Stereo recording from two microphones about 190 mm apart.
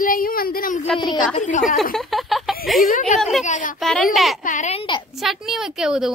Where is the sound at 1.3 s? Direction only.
40° left (ahead or behind).